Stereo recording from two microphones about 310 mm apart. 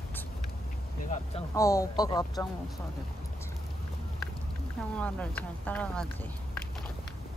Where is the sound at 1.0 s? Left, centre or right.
Left.